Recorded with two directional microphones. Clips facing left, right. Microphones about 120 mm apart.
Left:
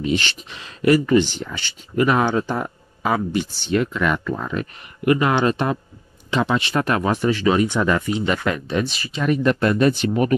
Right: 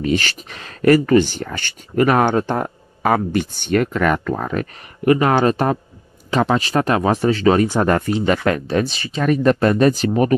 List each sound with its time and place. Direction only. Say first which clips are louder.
0.0 s speech: right 3 dB; 45° right (ahead or behind)